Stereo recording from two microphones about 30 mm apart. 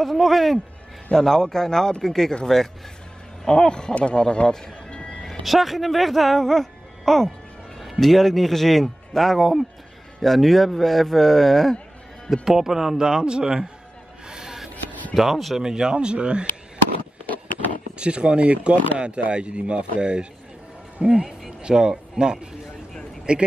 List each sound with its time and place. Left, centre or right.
0.0 s a man's voice: centre
1.1 s a man's voice: centre
3.4 s speech: left
5.4 s a man's voice: centre
12.4 s a man's voice: centre
14.3 s a sound: right
14.9 s a sound: left
15.1 s a man's voice: centre
15.5 s speech: right
17.9 s a man's voice: right